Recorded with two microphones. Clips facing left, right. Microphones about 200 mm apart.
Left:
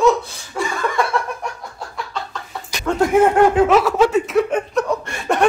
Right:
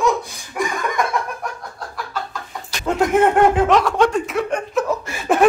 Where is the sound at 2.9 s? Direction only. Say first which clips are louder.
Even; 20° right (ahead or behind).